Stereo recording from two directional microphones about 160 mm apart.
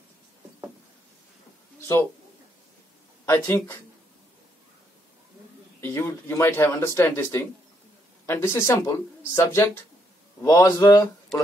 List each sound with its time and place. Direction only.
3.3 s speech: 15° left (ahead or behind)
5.8 s speech: 15° left (ahead or behind)